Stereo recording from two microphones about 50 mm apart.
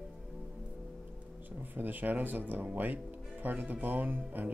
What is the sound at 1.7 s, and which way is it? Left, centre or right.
Speech, right.